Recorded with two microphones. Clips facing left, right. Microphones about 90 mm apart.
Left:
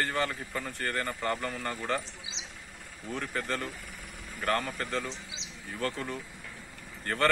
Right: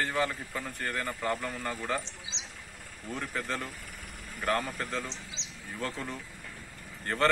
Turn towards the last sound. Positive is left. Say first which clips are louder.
# even
turn(degrees=-15)  # may be behind; listen again after turning